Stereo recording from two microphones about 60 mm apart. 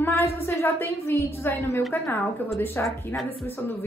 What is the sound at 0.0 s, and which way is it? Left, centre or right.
A woman's voice, left.